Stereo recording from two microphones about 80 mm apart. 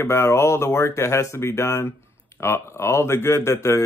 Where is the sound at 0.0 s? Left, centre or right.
Left.